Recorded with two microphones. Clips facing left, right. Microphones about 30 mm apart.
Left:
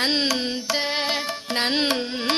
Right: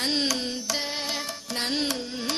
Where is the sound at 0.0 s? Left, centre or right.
Left.